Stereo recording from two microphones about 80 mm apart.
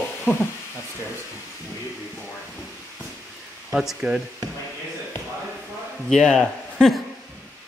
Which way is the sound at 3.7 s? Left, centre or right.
Centre.